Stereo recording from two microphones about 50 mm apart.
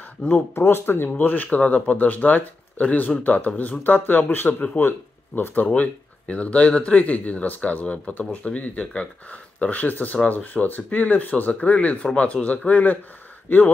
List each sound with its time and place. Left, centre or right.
0.6 s speech: left
1.2 s speech: left
5.8 s speech: left